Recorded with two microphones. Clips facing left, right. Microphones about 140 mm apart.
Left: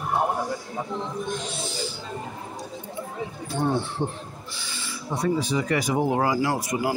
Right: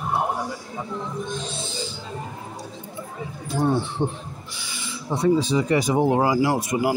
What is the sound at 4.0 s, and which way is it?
Speech, 20° right (ahead or behind).